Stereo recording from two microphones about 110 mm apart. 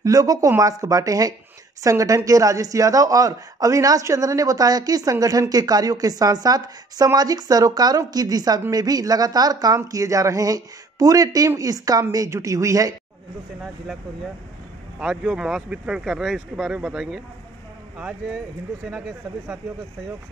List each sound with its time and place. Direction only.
0.0 s speech: 30° right (ahead or behind)
15.0 s speech: 5° right (ahead or behind)
18.9 s speech: 5° right (ahead or behind)